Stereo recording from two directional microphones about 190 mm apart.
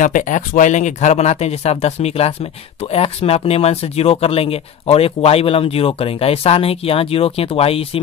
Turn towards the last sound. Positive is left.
turn(degrees=30)  # may be behind; listen again after turning